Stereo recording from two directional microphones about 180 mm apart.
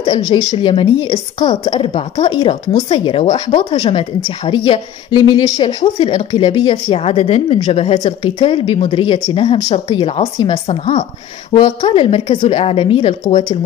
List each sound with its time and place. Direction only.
0.0 s a woman's voice: 25° left (ahead or behind)